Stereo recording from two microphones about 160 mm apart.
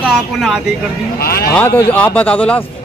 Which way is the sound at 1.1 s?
75° left (ahead or behind).